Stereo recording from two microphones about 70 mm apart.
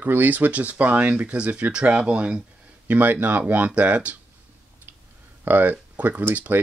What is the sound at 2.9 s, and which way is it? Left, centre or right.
Speech, right.